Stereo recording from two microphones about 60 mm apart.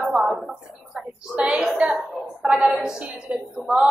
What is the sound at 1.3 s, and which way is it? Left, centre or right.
A woman's voice, centre.